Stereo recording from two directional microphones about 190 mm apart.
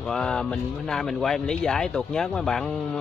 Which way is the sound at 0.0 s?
5° left (ahead or behind).